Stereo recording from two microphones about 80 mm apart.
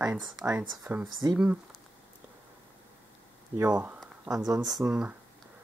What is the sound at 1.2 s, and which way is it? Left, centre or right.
Speech, right.